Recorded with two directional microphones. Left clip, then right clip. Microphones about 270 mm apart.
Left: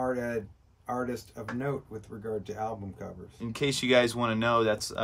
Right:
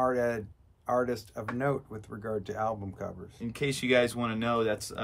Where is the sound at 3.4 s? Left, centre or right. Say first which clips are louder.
Left 2 dB; centre.